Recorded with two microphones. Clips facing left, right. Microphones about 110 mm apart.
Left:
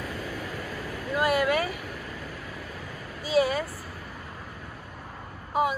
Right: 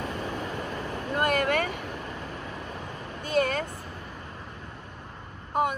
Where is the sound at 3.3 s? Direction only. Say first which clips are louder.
Left 2 dB; 60° right (ahead or behind).